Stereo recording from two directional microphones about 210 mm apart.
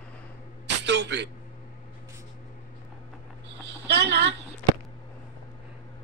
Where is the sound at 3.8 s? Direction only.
55° right (ahead or behind).